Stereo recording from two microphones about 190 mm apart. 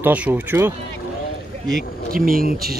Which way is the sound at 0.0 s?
10° right (ahead or behind).